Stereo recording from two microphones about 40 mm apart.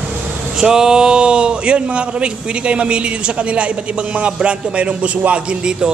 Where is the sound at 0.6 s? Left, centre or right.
Centre.